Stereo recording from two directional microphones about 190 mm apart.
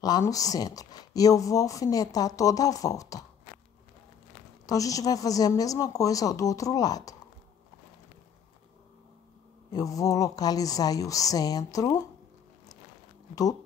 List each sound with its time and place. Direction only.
0.0 s speech: 20° left (ahead or behind)
4.6 s speech: 20° left (ahead or behind)
9.7 s a woman's voice: 20° left (ahead or behind)
13.3 s speech: 20° left (ahead or behind)